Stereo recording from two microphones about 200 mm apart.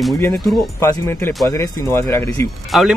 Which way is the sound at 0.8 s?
10° left (ahead or behind).